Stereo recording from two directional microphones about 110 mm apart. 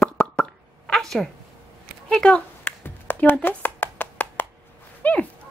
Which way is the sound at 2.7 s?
20° left (ahead or behind).